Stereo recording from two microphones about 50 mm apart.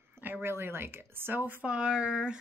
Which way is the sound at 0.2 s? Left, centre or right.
Right.